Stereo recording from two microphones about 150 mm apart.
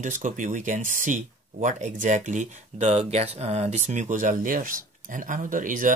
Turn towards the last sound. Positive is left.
turn(degrees=-60)  # may be behind; listen again after turning